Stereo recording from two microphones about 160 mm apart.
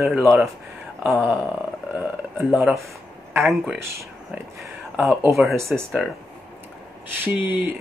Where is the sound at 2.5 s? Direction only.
5° right (ahead or behind).